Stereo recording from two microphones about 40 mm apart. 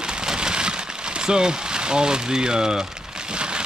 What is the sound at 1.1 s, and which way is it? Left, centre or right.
Speech, centre.